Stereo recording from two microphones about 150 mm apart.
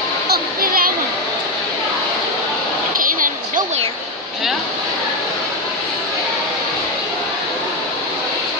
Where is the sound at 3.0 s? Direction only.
65° right (ahead or behind).